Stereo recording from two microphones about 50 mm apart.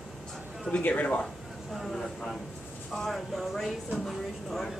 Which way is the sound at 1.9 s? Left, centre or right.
Centre.